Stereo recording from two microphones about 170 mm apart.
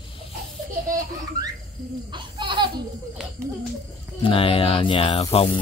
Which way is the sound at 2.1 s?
30° right (ahead or behind).